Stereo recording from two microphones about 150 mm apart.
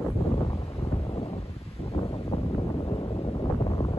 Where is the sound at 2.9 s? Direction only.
35° left (ahead or behind).